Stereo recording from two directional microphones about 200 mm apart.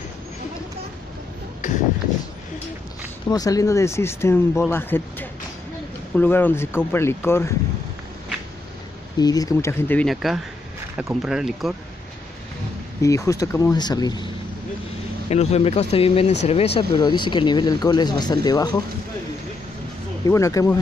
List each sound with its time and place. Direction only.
1.6 s a sound: 40° left (ahead or behind)
3.3 s speech: 20° left (ahead or behind)
9.2 s speech: 20° left (ahead or behind); by 11.7 s centre (ahead or behind)
13.0 s speech: 15° left (ahead or behind)
15.2 s speech: 30° left (ahead or behind)
20.2 s speech: 15° left (ahead or behind)